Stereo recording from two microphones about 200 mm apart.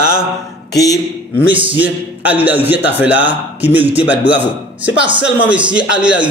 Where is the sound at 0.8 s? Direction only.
15° left (ahead or behind).